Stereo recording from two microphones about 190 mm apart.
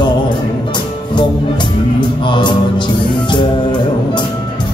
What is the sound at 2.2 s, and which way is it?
Music, 25° left (ahead or behind).